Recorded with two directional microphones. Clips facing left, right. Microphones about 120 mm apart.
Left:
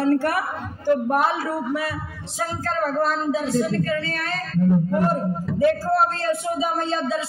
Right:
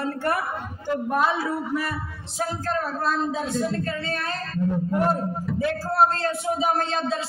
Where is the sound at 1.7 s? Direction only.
90° left.